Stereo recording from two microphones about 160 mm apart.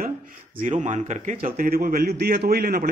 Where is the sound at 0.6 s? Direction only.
50° right (ahead or behind).